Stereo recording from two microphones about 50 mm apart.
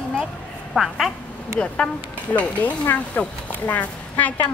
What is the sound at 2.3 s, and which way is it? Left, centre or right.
A woman's voice, left.